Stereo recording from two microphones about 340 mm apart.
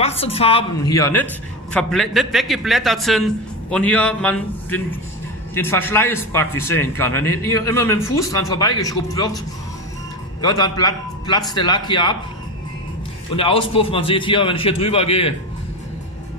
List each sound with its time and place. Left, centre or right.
0.0 s a woman's voice: centre
10.4 s a man's voice: centre
13.4 s a man's voice: centre